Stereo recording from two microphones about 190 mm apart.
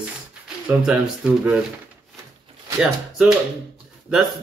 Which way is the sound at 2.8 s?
5° right (ahead or behind).